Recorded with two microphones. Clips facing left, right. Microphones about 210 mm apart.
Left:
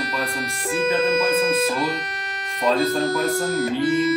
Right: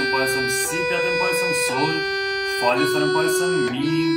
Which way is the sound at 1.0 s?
50° left (ahead or behind).